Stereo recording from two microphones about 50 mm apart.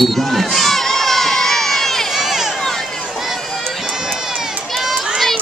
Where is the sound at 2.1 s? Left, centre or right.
Centre.